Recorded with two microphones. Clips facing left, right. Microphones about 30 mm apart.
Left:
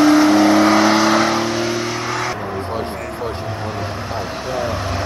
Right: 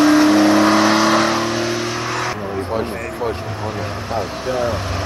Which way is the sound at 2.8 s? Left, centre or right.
Right.